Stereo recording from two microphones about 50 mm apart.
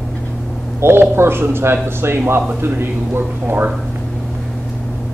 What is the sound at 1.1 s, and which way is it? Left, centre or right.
A man's voice, right.